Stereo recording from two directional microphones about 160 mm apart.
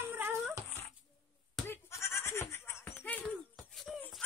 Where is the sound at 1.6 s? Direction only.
15° left (ahead or behind).